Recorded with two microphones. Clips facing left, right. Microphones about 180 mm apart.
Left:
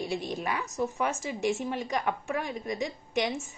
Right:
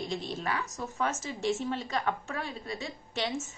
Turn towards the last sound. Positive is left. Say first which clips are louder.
# left 4 dB
turn(degrees=15)  # may be behind; listen again after turning